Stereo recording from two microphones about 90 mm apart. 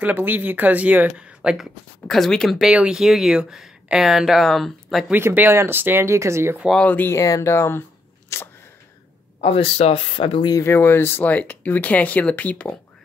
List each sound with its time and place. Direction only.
0.0 s speech: 20° right (ahead or behind)
2.0 s speech: 5° left (ahead or behind)
2.6 s speech: 10° right (ahead or behind)
5.1 s speech: 20° right (ahead or behind)
6.5 s speech: centre (ahead or behind)
6.8 s speech: 20° left (ahead or behind)
7.2 s speech: 35° left (ahead or behind)
9.4 s speech: 90° left
10.6 s speech: 30° left (ahead or behind)